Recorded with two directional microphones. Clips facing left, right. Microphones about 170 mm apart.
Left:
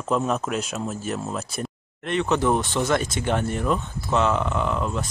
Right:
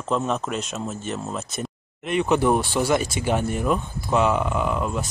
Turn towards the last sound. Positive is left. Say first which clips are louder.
# right 1 dB
turn(degrees=-5)  # may be behind; listen again after turning